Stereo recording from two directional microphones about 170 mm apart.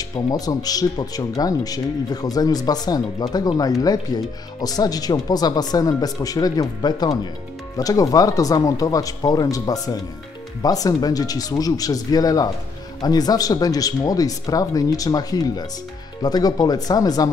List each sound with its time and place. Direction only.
0.1 s speech: 20° left (ahead or behind)